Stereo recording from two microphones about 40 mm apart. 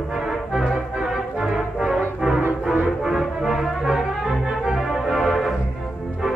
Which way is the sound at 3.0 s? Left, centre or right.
Centre.